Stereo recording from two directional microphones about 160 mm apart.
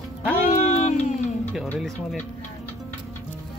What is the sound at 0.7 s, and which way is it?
Music, 45° left (ahead or behind).